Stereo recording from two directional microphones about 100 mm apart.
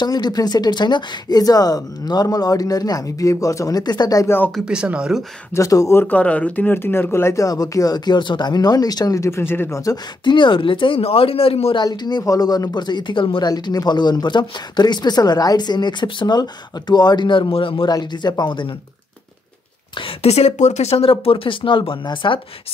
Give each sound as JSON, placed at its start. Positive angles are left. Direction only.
{"t": 0.0, "sound": "speech", "side_deg": 40}
{"t": 4.6, "sound": "speech", "side_deg": -10}
{"t": 5.5, "sound": "speech", "side_deg": 35}
{"t": 6.0, "sound": "speech", "side_deg": 15}
{"t": 10.2, "sound": "speech", "side_deg": 55}
{"t": 11.7, "sound": "speech", "side_deg": 45}
{"t": 13.5, "sound": "speech", "side_deg": 40}
{"t": 17.8, "sound": "speech", "side_deg": 45}
{"t": 20.2, "sound": "speech", "side_deg": 90}